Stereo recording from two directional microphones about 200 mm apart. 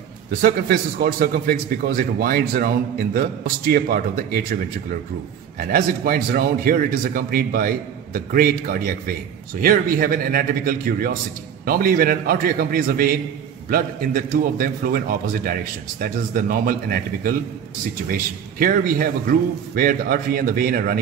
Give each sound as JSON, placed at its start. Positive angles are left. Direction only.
{"t": 0.3, "sound": "a man's voice", "side_deg": -45}
{"t": 5.6, "sound": "a man's voice", "side_deg": -45}
{"t": 9.6, "sound": "a man's voice", "side_deg": -45}
{"t": 18.1, "sound": "a man's voice", "side_deg": -45}